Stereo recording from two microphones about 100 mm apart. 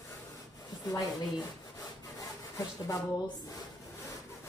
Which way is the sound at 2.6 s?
35° left (ahead or behind).